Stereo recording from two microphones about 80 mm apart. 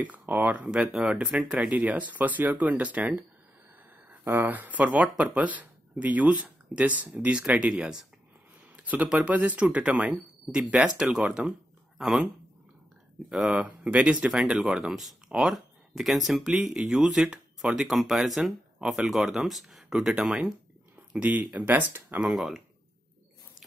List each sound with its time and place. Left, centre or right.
0.0 s speech: right
13.5 s speech: centre
22.2 s speech: centre